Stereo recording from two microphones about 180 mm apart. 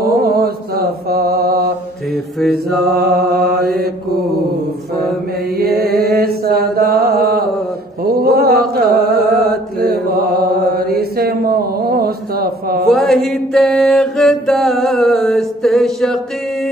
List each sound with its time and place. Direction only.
0.0 s mantra: 55° right (ahead or behind)
2.4 s mantra: centre (ahead or behind)
3.0 s mantra: 60° right (ahead or behind)
6.2 s mantra: 60° right (ahead or behind)
6.8 s a sound: 60° right (ahead or behind)
8.0 s mantra: 60° right (ahead or behind)
10.7 s mantra: 55° right (ahead or behind)
12.8 s mantra: centre (ahead or behind)